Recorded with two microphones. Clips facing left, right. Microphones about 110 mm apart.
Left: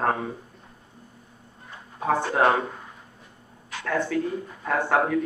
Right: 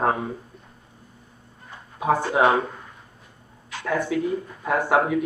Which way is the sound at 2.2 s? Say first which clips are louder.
Right 2 dB; centre (ahead or behind).